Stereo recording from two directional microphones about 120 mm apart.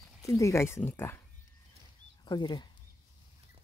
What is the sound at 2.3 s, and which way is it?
Speech, 40° left (ahead or behind).